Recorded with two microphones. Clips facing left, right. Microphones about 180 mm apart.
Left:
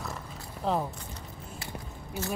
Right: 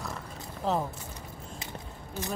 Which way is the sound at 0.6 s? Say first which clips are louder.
Even; centre (ahead or behind).